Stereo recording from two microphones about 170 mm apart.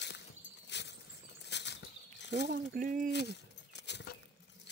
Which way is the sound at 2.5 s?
55° right (ahead or behind).